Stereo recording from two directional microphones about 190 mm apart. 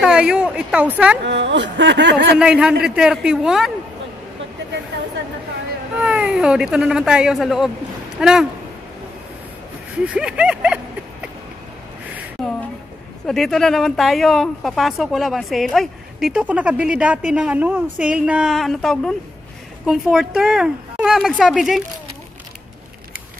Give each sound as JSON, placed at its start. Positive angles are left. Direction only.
{"t": 0.0, "sound": "speech", "side_deg": -5}
{"t": 1.2, "sound": "speech", "side_deg": -65}
{"t": 2.3, "sound": "speech", "side_deg": -5}
{"t": 5.9, "sound": "speech", "side_deg": -5}
{"t": 10.1, "sound": "speech", "side_deg": -5}
{"t": 13.3, "sound": "speech", "side_deg": 0}